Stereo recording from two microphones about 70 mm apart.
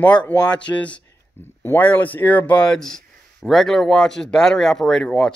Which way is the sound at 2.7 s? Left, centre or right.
Centre.